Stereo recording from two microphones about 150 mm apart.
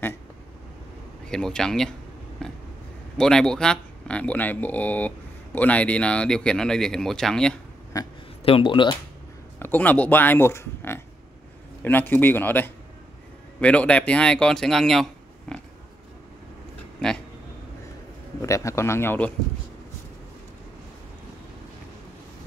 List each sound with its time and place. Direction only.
1.2 s speech: 5° left (ahead or behind)
7.9 s a man's voice: 25° left (ahead or behind)
8.5 s speech: 35° left (ahead or behind)
9.6 s a man's voice: 10° left (ahead or behind)
17.0 s speech: 5° left (ahead or behind)
18.4 s a man's voice: 20° left (ahead or behind)